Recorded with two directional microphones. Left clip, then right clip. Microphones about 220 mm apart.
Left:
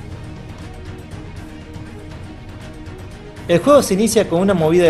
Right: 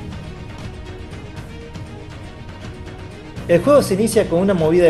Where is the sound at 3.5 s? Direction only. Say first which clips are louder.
Left 1 dB; 15° left (ahead or behind).